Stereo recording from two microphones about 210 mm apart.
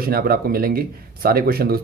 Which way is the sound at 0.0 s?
45° right (ahead or behind).